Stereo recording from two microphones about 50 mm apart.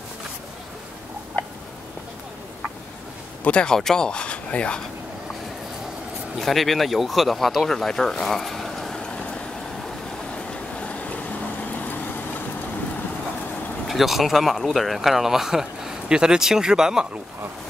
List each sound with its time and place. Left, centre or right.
3.4 s speech: left
3.7 s speech: centre
6.3 s speech: centre
10.3 s vehicle: left
13.8 s speech: centre